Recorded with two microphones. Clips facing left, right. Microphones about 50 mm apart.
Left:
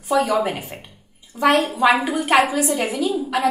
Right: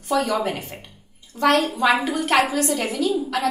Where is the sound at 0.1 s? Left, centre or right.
Centre.